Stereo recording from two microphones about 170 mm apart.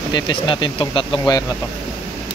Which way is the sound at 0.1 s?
30° left (ahead or behind).